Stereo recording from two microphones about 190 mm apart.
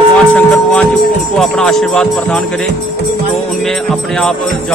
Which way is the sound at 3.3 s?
Centre (ahead or behind).